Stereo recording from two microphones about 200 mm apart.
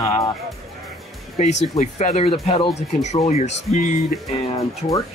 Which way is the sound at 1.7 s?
35° left (ahead or behind).